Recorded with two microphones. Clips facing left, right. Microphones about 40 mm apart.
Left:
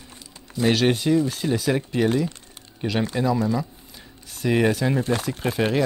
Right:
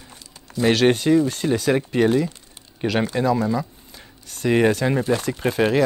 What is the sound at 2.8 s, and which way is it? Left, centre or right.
Speech, right.